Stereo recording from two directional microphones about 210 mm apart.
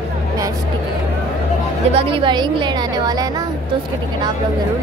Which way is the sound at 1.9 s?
25° right (ahead or behind).